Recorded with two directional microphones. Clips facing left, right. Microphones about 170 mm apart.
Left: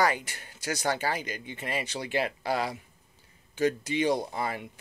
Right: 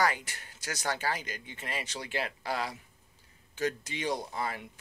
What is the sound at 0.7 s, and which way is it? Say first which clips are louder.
Speech: left 5 dB; 30° left (ahead or behind).